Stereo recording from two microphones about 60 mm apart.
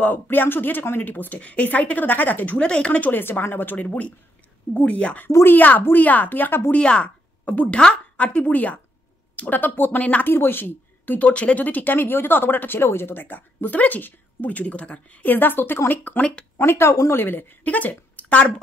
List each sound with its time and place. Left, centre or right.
0.0 s a woman's voice: left
2.6 s a woman's voice: centre; by 3.8 s left
3.8 s a woman's voice: left
6.7 s a woman's voice: centre
10.2 s a woman's voice: left
16.2 s speech: centre
16.5 s a woman's voice: left